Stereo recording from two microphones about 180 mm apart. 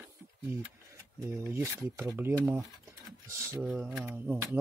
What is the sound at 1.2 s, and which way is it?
Speech, 15° right (ahead or behind).